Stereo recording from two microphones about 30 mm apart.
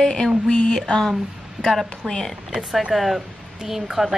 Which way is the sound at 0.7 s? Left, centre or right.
Left.